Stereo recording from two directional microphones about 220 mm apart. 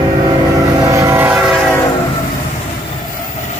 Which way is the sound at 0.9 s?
10° right (ahead or behind).